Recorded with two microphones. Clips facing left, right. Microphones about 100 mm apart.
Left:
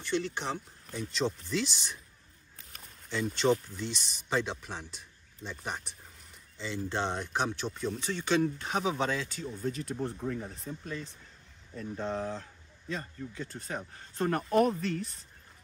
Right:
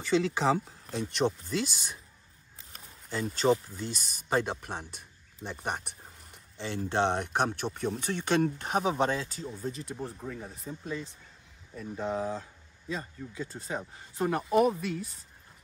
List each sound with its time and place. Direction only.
0.0 s speech: 90° right
1.1 s a man's voice: 50° right (ahead or behind)
2.7 s a sound: 40° right (ahead or behind)
3.6 s a man's voice: 45° right (ahead or behind)
9.8 s speech: 5° right (ahead or behind)